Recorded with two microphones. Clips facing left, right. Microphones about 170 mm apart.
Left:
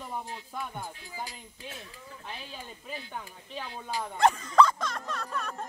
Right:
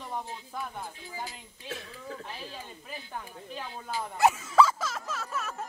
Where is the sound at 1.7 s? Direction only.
70° right (ahead or behind).